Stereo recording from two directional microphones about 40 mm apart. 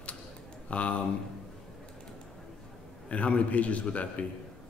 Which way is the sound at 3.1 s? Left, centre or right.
Left.